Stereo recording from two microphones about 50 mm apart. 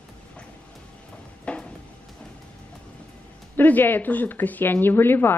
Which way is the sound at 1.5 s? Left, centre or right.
Left.